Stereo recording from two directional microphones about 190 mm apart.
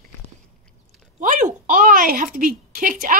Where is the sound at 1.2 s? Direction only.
45° right (ahead or behind).